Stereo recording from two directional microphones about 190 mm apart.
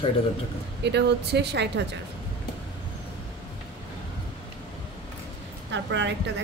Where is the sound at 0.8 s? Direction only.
65° right (ahead or behind).